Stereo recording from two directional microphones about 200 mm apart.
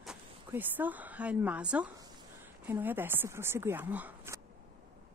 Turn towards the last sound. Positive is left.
turn(degrees=-10)  # may be behind; listen again after turning